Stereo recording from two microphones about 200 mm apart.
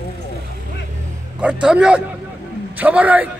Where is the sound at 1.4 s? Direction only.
5° right (ahead or behind).